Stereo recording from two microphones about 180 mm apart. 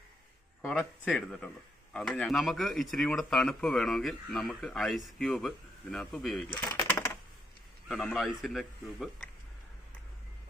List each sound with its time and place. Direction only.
0.7 s speech: centre (ahead or behind)
7.9 s speech: centre (ahead or behind)